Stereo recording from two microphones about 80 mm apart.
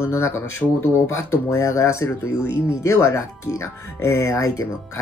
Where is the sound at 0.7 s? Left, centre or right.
Left.